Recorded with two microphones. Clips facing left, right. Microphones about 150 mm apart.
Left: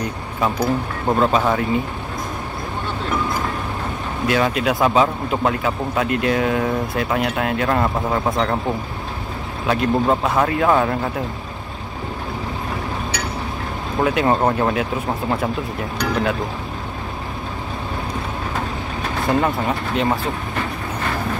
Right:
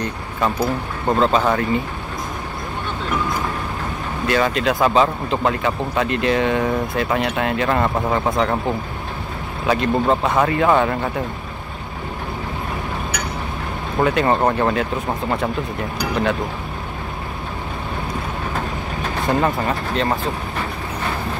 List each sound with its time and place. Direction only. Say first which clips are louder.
1.0 s speech: right 1 dB; 5° left (ahead or behind)
4.3 s speech: even; 5° left (ahead or behind)
9.7 s speech: even; centre (ahead or behind)
13.9 s speech: even; centre (ahead or behind)
19.2 s speech: even; centre (ahead or behind)